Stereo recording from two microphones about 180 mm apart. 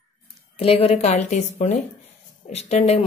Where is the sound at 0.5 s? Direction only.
35° left (ahead or behind).